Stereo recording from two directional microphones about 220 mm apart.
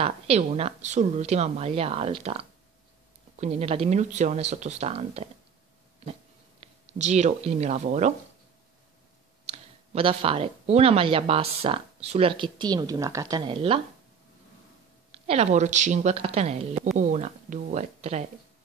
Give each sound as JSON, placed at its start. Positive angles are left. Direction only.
{"t": 0.0, "sound": "speech", "side_deg": -30}
{"t": 6.6, "sound": "speech", "side_deg": -30}
{"t": 9.5, "sound": "speech", "side_deg": -25}
{"t": 15.0, "sound": "speech", "side_deg": -30}